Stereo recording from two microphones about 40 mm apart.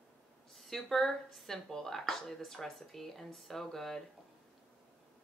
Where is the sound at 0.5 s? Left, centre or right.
Centre.